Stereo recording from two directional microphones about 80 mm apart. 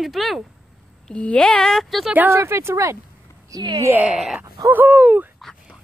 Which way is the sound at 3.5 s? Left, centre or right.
Right.